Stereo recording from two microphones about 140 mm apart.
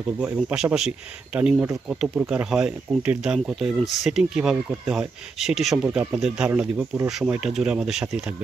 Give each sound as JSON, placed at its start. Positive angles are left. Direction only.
{"t": 0.2, "sound": "speech", "side_deg": -10}